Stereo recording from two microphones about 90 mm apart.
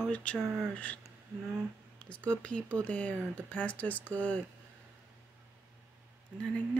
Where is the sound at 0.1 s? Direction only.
15° left (ahead or behind).